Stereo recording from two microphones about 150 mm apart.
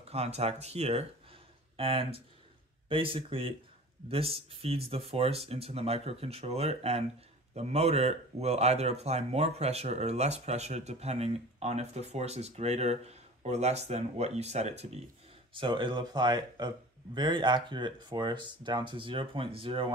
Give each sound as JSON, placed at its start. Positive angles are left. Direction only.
{"t": 0.1, "sound": "speech", "side_deg": -45}
{"t": 15.5, "sound": "speech", "side_deg": -35}